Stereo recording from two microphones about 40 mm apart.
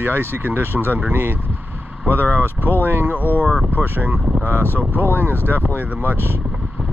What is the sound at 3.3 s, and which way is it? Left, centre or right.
Speech, left.